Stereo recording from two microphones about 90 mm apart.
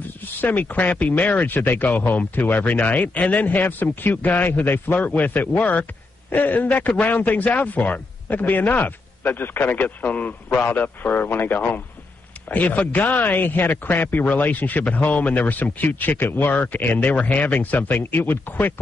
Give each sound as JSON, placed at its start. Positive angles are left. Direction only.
{"t": 0.2, "sound": "a man's voice", "side_deg": 20}